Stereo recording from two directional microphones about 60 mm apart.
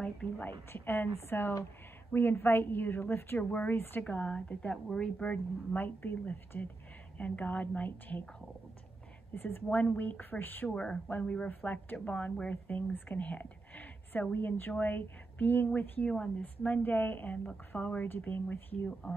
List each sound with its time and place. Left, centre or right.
0.4 s a woman's voice: left
3.7 s a woman's voice: left
4.0 s speech: centre
5.8 s a woman's voice: left
9.3 s a woman's voice: left
10.7 s speech: centre
16.1 s speech: centre